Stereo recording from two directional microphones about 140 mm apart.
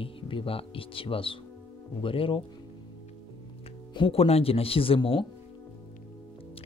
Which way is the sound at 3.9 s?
40° left (ahead or behind).